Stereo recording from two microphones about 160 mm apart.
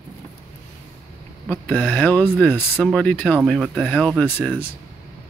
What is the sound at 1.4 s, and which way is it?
Speech, 10° left (ahead or behind).